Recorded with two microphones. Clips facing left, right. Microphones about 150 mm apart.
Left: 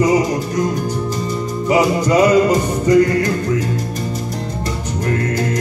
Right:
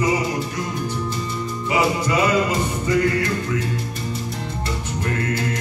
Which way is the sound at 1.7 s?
40° left (ahead or behind).